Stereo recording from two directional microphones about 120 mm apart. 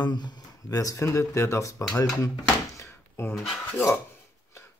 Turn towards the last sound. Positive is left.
turn(degrees=20)  # may be behind; listen again after turning